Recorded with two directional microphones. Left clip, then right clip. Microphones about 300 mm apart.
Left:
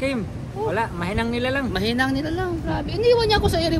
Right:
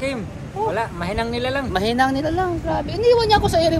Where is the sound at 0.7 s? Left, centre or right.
Centre.